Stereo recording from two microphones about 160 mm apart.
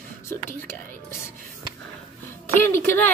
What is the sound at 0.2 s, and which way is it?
Speech, 15° left (ahead or behind).